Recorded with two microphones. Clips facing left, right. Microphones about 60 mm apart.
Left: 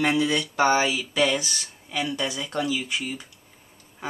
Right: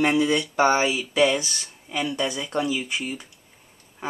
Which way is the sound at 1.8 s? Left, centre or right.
Centre.